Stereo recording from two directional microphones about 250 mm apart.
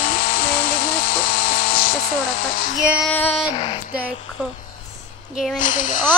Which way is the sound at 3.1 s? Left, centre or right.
Centre.